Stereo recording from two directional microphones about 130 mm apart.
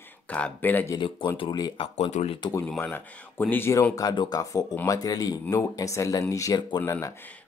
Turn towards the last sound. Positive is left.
turn(degrees=20)  # may be behind; listen again after turning